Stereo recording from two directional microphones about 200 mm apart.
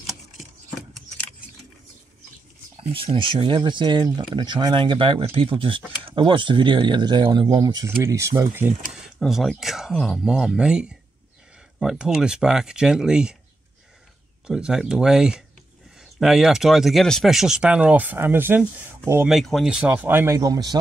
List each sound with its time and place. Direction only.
2.8 s speech: 30° right (ahead or behind); by 13.4 s 5° right (ahead or behind)
14.5 s speech: 5° right (ahead or behind); by 20.7 s 20° right (ahead or behind)